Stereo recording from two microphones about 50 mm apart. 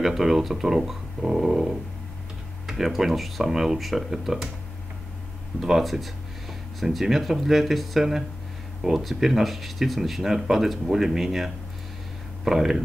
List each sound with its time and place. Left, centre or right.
0.0 s speech: centre
5.6 s speech: centre